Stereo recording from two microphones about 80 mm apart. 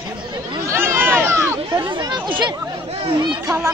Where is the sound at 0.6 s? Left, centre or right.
Right.